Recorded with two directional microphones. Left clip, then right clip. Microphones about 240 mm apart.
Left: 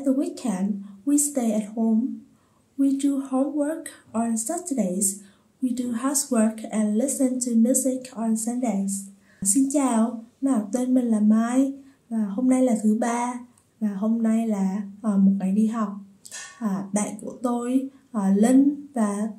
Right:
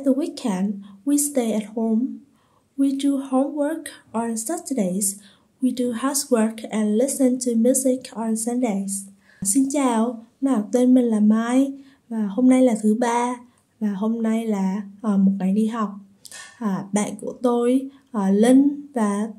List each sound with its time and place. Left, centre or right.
0.0 s a woman's voice: right